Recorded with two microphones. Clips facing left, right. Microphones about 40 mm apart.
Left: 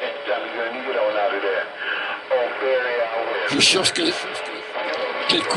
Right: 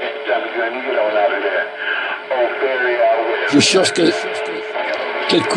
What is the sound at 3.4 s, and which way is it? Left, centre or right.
Speech, centre.